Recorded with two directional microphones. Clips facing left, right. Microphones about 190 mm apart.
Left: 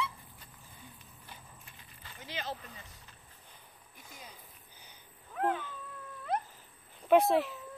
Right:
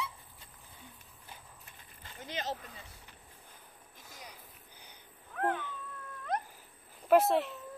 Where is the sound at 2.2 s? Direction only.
45° right (ahead or behind).